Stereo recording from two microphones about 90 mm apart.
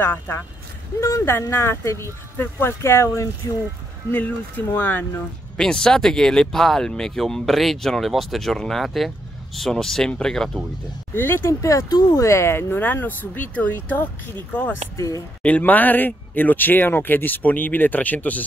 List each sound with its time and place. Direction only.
0.0 s speech: 25° left (ahead or behind)
5.6 s speech: 5° left (ahead or behind)
11.1 s speech: 25° left (ahead or behind)
15.0 s speech: 35° left (ahead or behind)
15.4 s speech: 15° left (ahead or behind)